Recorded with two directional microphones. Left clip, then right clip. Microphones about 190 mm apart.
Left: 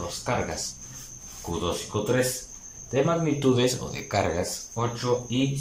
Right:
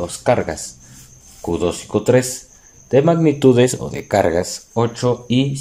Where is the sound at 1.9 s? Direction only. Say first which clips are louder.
Right 10 dB; 55° right (ahead or behind).